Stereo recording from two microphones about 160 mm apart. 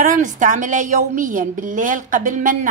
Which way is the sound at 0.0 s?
50° right (ahead or behind).